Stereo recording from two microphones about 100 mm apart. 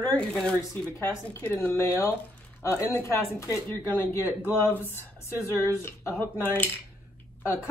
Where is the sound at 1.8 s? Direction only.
30° left (ahead or behind).